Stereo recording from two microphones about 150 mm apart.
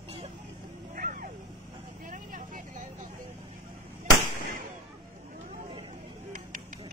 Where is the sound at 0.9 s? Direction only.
70° right (ahead or behind).